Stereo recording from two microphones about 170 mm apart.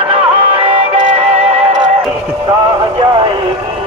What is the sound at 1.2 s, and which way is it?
Music, 35° right (ahead or behind).